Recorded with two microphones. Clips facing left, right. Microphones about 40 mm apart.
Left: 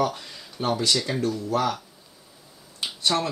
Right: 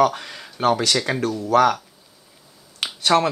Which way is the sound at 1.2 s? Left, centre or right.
Right.